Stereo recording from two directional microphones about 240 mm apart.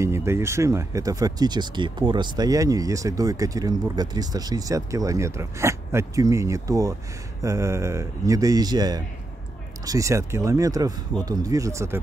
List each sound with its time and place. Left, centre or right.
0.0 s speech: centre